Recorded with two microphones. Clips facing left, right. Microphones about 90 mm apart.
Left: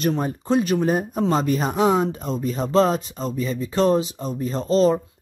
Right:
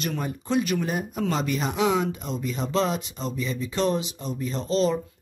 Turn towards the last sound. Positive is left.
turn(degrees=40)  # may be behind; listen again after turning